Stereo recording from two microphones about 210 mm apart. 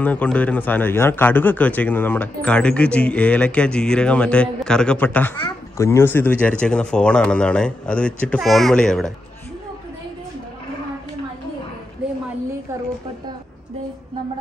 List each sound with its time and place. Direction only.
0.0 s a man's voice: 5° left (ahead or behind)